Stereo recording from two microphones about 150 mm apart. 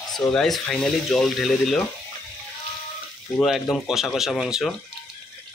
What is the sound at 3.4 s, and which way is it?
Speech, centre (ahead or behind).